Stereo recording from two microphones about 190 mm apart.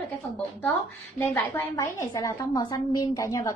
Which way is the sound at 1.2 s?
15° left (ahead or behind).